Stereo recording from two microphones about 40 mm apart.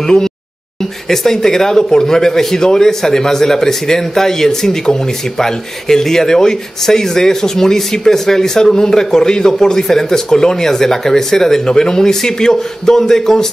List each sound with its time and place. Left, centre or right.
0.0 s a man's voice: centre